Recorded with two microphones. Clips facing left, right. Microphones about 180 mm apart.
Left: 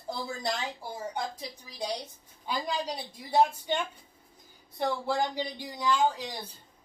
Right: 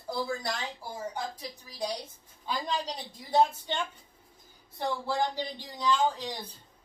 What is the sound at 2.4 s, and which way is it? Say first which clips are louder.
Speech: left 1 dB; 10° left (ahead or behind).